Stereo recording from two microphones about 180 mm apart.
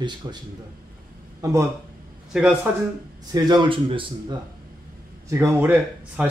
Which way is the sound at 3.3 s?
25° right (ahead or behind).